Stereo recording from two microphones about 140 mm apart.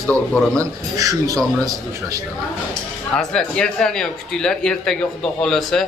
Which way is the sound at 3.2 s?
5° left (ahead or behind).